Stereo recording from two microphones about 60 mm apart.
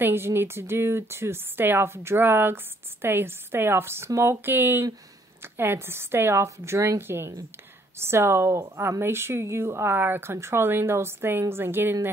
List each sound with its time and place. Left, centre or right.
0.0 s a woman's voice: right